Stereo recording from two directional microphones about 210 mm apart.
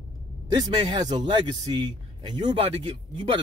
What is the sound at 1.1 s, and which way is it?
A man's voice, 20° right (ahead or behind).